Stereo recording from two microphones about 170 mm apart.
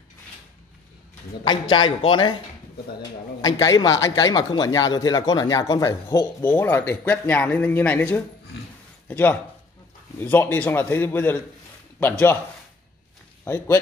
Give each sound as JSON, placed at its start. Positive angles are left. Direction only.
{"t": 1.4, "sound": "a man's voice", "side_deg": 25}
{"t": 13.4, "sound": "speech", "side_deg": 15}